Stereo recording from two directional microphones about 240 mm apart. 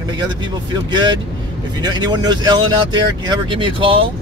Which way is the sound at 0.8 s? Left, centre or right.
Centre.